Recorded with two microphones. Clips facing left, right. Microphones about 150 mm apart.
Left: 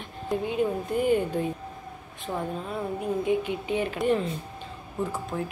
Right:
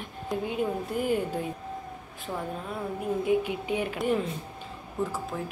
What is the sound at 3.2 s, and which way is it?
A woman's voice, 10° right (ahead or behind).